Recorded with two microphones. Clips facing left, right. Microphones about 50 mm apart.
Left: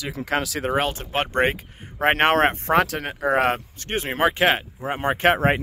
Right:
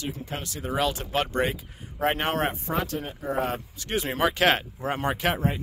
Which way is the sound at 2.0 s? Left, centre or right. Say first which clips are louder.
Left 7 dB; left.